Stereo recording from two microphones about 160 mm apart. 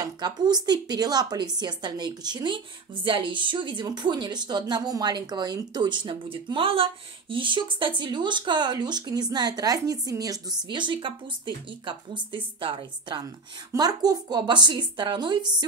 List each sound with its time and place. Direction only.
0.0 s a woman's voice: 25° right (ahead or behind)